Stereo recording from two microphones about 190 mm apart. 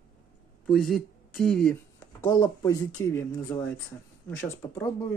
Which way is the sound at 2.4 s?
15° left (ahead or behind).